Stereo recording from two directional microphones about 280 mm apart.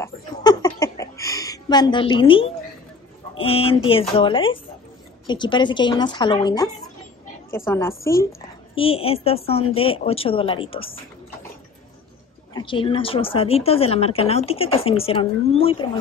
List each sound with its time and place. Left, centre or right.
0.0 s a sound: centre
3.3 s a woman's voice: left
12.5 s a woman's voice: centre